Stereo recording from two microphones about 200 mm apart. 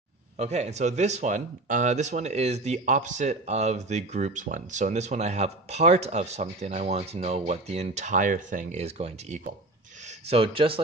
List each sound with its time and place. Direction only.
0.4 s speech: 35° right (ahead or behind)